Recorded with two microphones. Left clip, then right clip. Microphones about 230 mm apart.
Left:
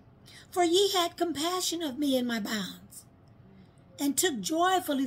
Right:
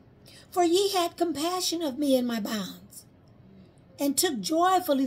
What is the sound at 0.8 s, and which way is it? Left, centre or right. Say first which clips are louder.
Speech: right 1 dB; right.